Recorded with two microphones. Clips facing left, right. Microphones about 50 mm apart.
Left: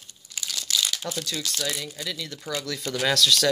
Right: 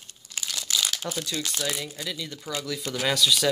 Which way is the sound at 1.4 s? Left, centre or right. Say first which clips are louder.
Even; centre.